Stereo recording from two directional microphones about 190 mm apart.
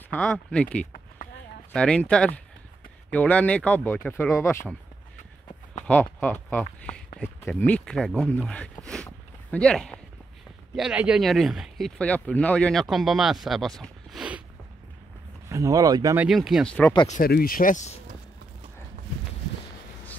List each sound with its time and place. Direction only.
0.1 s speech: 10° left (ahead or behind)
0.9 s a sound: 45° left (ahead or behind)
1.7 s speech: 5° left (ahead or behind)
6.1 s speech: 10° left (ahead or behind)
15.4 s speech: 15° right (ahead or behind)
16.3 s speech: centre (ahead or behind)
17.1 s speech: 50° left (ahead or behind)